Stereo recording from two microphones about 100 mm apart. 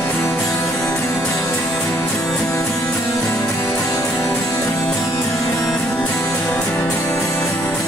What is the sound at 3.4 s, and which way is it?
Music, 30° left (ahead or behind).